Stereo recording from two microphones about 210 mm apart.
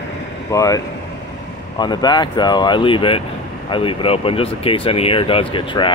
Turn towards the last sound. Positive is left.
turn(degrees=25)  # may be behind; listen again after turning